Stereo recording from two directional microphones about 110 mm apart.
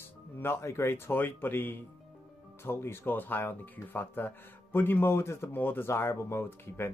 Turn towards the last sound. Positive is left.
turn(degrees=20)  # may be behind; listen again after turning